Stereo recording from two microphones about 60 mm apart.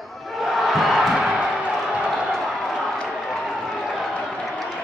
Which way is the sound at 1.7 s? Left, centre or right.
Centre.